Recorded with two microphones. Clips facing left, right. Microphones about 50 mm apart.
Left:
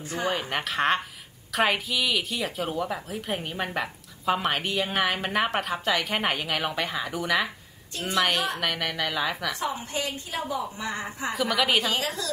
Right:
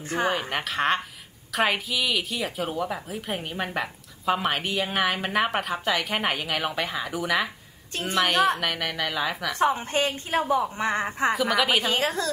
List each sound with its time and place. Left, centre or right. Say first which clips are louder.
0.0 s speech: right 4 dB; right
0.5 s speech: even; centre
7.9 s a woman's voice: right 2 dB; right
8.5 s speech: even; centre
9.5 s a woman's voice: right 6 dB; right
11.3 s speech: left 3 dB; centre
11.8 s a woman's voice: right 3 dB; right